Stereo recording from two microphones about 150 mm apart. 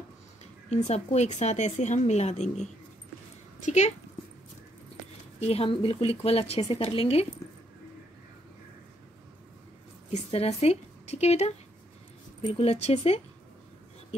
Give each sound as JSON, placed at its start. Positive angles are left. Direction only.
{"t": 0.7, "sound": "a woman's voice", "side_deg": 50}
{"t": 5.4, "sound": "speech", "side_deg": 40}
{"t": 10.1, "sound": "a woman's voice", "side_deg": 45}